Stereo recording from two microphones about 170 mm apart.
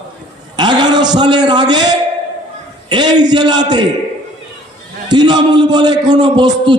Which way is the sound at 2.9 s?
25° right (ahead or behind).